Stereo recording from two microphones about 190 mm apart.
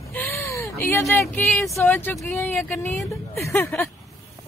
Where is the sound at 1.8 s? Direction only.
10° left (ahead or behind).